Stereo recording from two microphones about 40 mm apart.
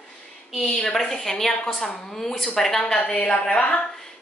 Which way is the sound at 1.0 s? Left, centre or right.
Centre.